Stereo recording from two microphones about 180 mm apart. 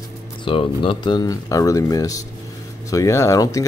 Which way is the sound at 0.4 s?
30° left (ahead or behind).